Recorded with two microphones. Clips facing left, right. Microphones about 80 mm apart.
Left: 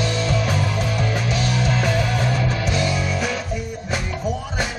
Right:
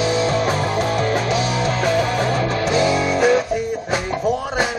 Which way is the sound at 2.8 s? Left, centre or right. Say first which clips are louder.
Right 9 dB; right.